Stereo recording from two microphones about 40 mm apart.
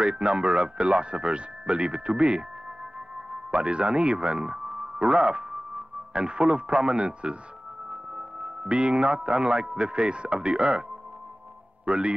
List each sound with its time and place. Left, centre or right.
0.0 s speech: right
3.5 s speech: right
4.6 s music: centre
5.1 s speech: right
7.9 s music: centre
8.6 s speech: right